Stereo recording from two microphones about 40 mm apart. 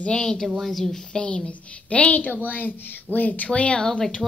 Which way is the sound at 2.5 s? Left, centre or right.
Left.